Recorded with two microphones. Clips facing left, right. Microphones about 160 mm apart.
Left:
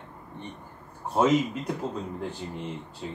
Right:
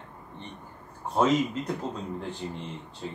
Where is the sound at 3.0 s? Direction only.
5° left (ahead or behind).